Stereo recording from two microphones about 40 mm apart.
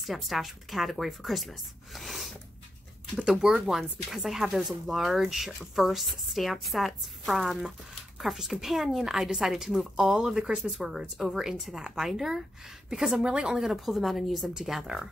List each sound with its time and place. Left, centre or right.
0.0 s speech: centre
3.3 s speech: centre
13.6 s speech: centre